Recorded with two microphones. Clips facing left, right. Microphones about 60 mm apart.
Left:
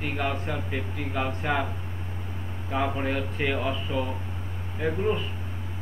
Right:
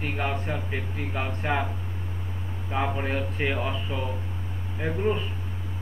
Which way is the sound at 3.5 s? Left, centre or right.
Centre.